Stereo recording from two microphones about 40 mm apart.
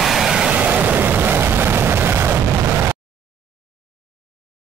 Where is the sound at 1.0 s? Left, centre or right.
Right.